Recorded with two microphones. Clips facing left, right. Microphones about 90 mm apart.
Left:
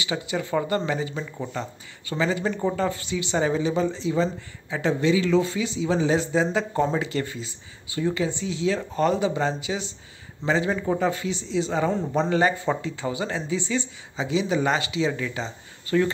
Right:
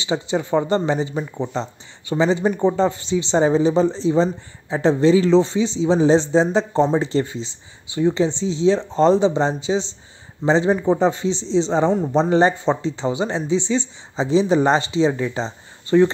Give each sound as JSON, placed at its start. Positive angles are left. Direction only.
{"t": 0.0, "sound": "speech", "side_deg": -25}
{"t": 11.9, "sound": "speech", "side_deg": -15}
{"t": 12.2, "sound": "speech", "side_deg": -30}